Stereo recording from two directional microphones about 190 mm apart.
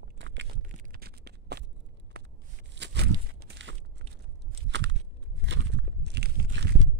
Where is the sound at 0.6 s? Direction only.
50° right (ahead or behind).